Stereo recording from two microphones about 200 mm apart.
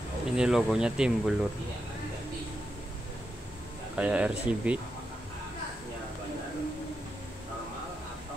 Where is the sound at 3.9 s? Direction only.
5° right (ahead or behind).